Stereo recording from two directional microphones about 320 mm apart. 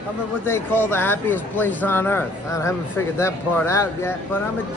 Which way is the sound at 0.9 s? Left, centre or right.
Centre.